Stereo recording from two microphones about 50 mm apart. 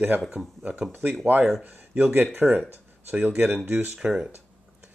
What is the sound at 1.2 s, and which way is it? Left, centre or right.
Speech, right.